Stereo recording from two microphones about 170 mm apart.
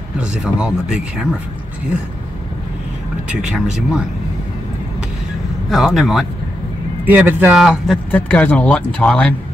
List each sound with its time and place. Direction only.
0.2 s speech: 5° right (ahead or behind)
3.3 s speech: 5° right (ahead or behind)
5.7 s speech: centre (ahead or behind)